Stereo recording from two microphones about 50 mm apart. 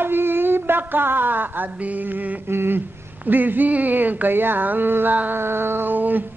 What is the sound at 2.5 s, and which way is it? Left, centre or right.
Speech, right.